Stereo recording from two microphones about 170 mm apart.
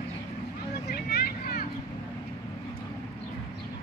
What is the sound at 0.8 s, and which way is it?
Vehicle, 65° left (ahead or behind).